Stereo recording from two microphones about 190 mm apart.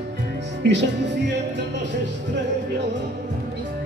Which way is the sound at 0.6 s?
65° right (ahead or behind).